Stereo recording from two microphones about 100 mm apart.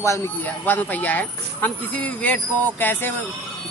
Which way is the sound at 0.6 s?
15° left (ahead or behind).